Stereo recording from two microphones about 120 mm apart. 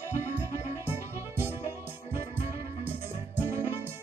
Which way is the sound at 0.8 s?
20° right (ahead or behind).